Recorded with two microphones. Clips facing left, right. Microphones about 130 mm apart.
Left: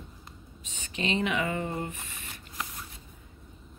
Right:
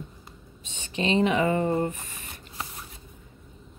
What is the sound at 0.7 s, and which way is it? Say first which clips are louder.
Speech: right 5 dB; 30° right (ahead or behind).